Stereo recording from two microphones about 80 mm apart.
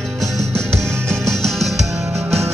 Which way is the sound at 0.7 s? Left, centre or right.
Right.